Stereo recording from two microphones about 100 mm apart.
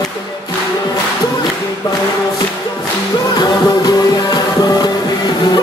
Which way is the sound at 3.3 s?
45° left (ahead or behind).